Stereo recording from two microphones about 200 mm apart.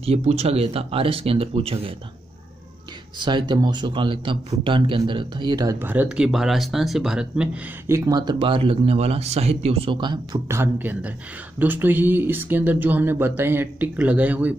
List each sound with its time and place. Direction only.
0.0 s speech: 30° right (ahead or behind)
3.2 s a man's voice: 20° right (ahead or behind)